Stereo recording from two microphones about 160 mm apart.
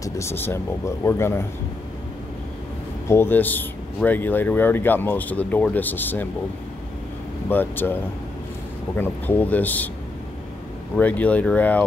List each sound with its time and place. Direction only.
0.0 s speech: 15° left (ahead or behind)
3.1 s speech: 15° left (ahead or behind)
7.4 s speech: 10° left (ahead or behind)
11.0 s speech: 10° left (ahead or behind)